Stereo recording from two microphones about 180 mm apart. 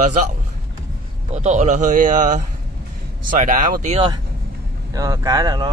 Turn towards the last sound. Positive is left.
turn(degrees=-20)  # may be behind; listen again after turning